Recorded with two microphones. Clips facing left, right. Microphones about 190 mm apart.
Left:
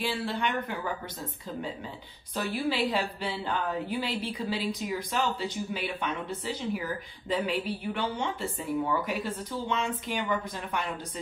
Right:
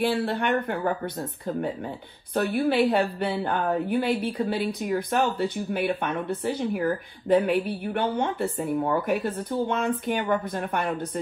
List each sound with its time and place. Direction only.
0.0 s a woman's voice: 60° right (ahead or behind)
2.3 s a woman's voice: 55° right (ahead or behind)